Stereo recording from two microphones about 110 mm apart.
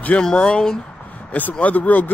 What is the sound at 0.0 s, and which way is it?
Speech, 10° left (ahead or behind).